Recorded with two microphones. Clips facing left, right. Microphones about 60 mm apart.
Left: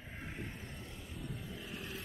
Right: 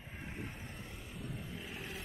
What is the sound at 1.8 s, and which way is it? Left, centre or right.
Vehicle, centre.